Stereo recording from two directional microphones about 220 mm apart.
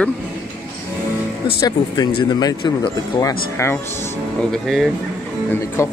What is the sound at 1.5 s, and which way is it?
Speech, 20° left (ahead or behind).